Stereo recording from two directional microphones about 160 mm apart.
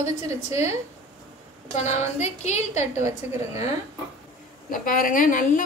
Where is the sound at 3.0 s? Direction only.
15° right (ahead or behind).